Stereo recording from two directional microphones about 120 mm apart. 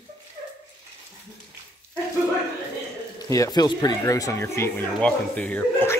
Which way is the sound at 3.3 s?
30° left (ahead or behind).